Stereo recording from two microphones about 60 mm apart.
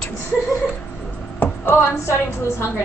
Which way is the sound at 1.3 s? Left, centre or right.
Left.